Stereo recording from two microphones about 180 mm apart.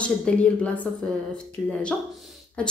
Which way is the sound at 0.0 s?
5° left (ahead or behind).